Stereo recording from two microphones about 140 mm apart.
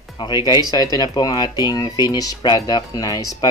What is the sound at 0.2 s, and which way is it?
Speech, 30° left (ahead or behind).